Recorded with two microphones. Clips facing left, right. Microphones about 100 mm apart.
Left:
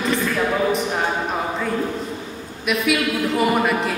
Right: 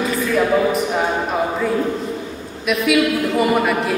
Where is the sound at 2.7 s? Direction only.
Centre (ahead or behind).